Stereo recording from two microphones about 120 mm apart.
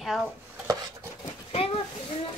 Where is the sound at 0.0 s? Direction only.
5° right (ahead or behind).